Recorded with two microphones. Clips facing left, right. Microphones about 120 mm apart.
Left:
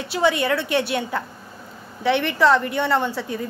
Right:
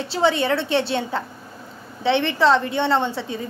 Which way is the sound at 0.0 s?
30° right (ahead or behind).